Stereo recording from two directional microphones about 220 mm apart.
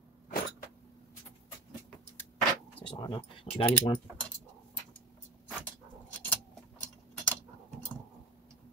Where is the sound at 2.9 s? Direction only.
20° left (ahead or behind).